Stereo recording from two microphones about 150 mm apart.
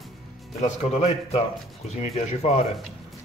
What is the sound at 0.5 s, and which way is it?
Speech, 45° left (ahead or behind).